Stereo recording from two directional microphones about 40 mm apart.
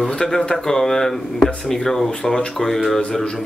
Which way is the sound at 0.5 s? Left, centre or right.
Centre.